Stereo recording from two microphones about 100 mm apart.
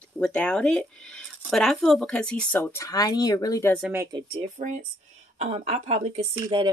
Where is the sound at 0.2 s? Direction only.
10° left (ahead or behind).